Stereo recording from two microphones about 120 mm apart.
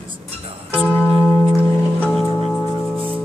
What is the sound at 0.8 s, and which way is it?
Music, 15° left (ahead or behind).